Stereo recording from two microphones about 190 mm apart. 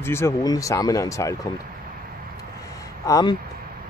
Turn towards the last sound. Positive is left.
turn(degrees=20)  # may be behind; listen again after turning